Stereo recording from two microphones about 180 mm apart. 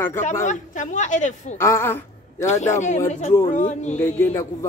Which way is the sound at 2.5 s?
40° left (ahead or behind).